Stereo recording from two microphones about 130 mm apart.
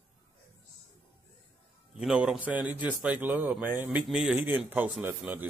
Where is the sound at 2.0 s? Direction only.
5° right (ahead or behind).